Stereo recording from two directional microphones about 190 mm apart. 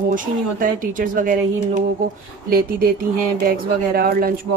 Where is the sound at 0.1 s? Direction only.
45° right (ahead or behind).